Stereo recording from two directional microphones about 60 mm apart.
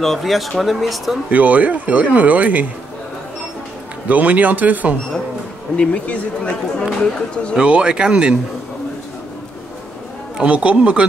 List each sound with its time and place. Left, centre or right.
0.0 s speech: centre
1.3 s speech: right
4.1 s speech: right
5.8 s speech: left
7.5 s speech: centre
10.4 s speech: right